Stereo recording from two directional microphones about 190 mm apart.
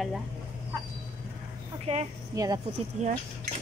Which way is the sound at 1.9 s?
30° right (ahead or behind).